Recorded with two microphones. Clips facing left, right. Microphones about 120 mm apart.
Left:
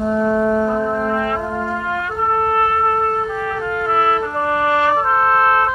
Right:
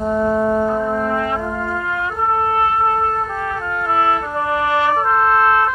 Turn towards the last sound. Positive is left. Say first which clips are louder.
# left 1 dB
turn(degrees=-20)  # may be behind; listen again after turning